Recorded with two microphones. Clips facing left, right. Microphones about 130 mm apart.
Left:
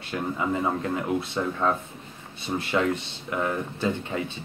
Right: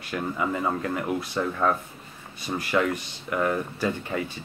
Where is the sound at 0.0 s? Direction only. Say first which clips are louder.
Even; 25° left (ahead or behind).